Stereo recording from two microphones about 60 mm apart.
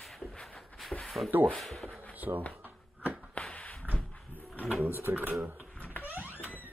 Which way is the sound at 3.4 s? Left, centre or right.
Left.